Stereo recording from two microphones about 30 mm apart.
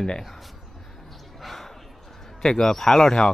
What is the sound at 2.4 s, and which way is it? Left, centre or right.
Speech, left.